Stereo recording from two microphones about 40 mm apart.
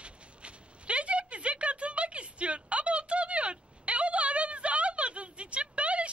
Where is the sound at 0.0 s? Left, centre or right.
Right.